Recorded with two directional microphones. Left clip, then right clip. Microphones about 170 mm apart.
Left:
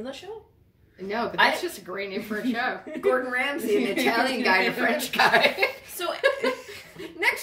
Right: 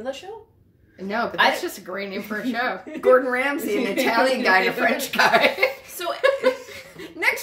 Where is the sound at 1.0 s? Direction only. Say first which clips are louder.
Right 2 dB; 20° right (ahead or behind).